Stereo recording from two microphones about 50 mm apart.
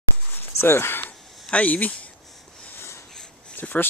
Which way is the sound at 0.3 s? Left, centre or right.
Left.